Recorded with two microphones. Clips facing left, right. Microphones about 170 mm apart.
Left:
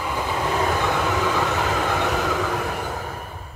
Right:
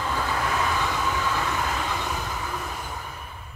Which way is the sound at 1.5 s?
65° left (ahead or behind).